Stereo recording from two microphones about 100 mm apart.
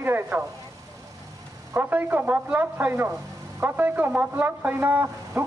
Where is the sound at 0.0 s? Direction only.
20° right (ahead or behind).